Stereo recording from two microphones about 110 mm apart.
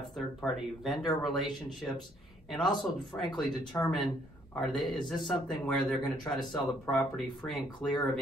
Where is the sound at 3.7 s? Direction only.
5° left (ahead or behind).